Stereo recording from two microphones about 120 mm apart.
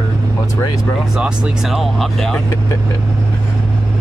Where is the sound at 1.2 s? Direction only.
Centre (ahead or behind).